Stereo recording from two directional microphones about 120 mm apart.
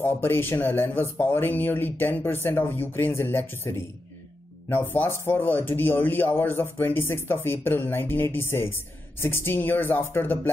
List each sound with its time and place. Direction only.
0.0 s speech: 20° left (ahead or behind)